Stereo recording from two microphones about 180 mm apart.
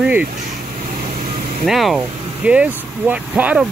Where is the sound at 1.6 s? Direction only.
Centre (ahead or behind).